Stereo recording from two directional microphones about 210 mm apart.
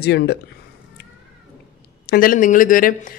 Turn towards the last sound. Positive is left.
turn(degrees=40)  # may be behind; listen again after turning